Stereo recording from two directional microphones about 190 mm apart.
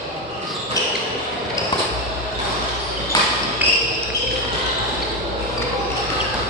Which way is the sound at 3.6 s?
10° right (ahead or behind).